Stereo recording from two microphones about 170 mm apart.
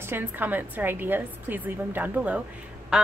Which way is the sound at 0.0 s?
15° right (ahead or behind).